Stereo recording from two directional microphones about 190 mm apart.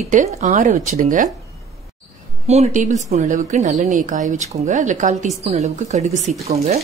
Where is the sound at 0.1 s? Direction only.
40° right (ahead or behind).